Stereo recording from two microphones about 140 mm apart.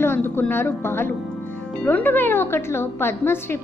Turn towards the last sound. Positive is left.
turn(degrees=15)  # may be behind; listen again after turning